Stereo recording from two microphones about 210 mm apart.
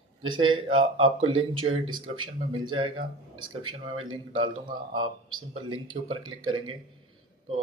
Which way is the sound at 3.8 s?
25° right (ahead or behind).